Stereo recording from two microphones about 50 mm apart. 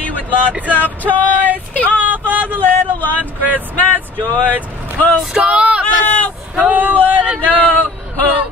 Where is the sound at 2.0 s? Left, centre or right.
Right.